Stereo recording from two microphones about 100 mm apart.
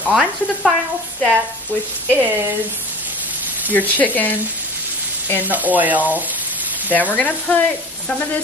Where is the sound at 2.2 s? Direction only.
15° right (ahead or behind).